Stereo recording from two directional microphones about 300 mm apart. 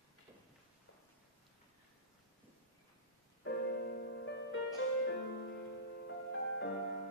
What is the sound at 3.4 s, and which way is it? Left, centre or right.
Music, left.